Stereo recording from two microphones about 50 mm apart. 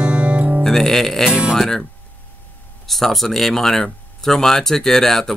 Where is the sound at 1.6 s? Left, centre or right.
Centre.